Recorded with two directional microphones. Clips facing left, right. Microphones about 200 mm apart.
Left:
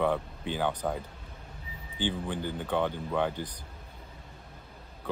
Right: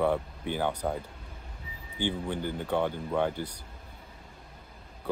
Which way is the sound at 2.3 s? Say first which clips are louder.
Right 1 dB; 15° right (ahead or behind).